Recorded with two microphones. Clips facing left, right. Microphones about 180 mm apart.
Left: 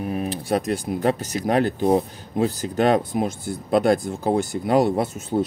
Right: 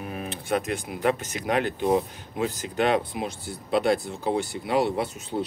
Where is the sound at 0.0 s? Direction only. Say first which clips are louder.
Left 8 dB; 35° left (ahead or behind).